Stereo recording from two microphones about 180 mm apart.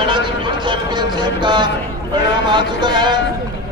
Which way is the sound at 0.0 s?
25° right (ahead or behind).